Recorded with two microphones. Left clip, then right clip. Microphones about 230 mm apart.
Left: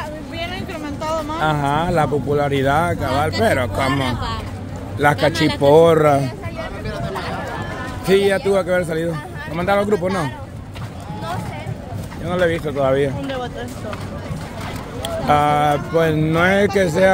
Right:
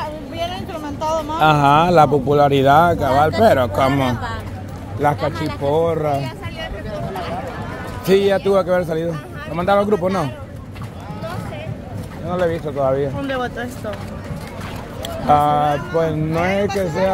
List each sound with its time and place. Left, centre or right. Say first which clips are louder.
0.4 s vehicle: right 2 dB; centre
1.4 s speech: right 8 dB; right
5.2 s speech: left 5 dB; left
5.6 s speech: left 7 dB; left
8.1 s speech: right 1 dB; centre
9.9 s speech: right 1 dB; centre
12.3 s speech: left 1 dB; centre
13.3 s speech: right 3 dB; right
15.2 s speech: right 1 dB; centre; by 17.1 s left